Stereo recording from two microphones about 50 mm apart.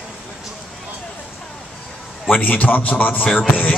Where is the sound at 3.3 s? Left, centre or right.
Left.